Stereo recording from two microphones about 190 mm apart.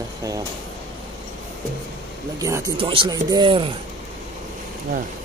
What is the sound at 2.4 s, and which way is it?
Speech, 20° right (ahead or behind).